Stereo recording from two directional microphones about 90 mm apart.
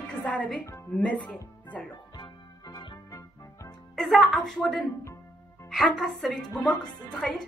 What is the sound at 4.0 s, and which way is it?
A woman's voice, centre (ahead or behind).